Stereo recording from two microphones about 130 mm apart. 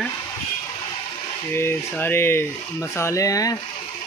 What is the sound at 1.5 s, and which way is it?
Speech, 20° left (ahead or behind).